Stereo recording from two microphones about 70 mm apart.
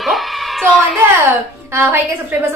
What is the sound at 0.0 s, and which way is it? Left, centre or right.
Music, centre.